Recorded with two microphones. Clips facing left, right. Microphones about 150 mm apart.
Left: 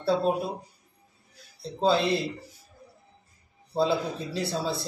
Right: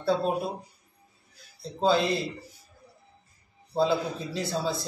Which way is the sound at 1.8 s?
Centre (ahead or behind).